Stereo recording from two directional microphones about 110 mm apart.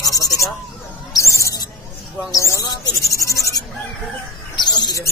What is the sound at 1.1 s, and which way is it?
Mouse, 30° left (ahead or behind).